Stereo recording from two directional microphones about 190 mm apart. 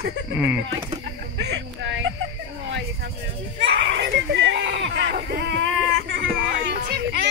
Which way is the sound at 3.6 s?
65° right (ahead or behind).